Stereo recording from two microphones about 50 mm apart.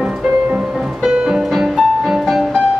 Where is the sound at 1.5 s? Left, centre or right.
Centre.